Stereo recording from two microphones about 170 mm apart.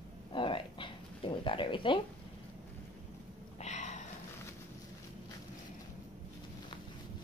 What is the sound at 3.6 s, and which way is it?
Sniff, 45° left (ahead or behind).